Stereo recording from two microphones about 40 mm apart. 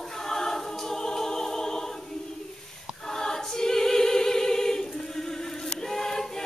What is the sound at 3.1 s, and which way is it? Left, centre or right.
Choir, centre.